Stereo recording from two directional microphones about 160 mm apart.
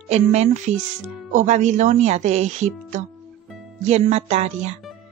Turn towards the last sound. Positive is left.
turn(degrees=-45)  # may be behind; listen again after turning